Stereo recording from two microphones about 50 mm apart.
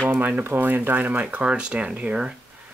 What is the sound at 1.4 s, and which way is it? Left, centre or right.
Speech, centre.